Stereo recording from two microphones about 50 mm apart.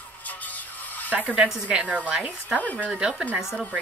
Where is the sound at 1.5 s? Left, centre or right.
Centre.